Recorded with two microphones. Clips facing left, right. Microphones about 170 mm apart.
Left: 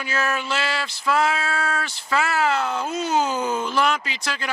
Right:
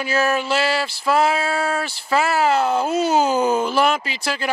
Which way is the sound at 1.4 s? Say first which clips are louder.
Right 4 dB; 30° right (ahead or behind).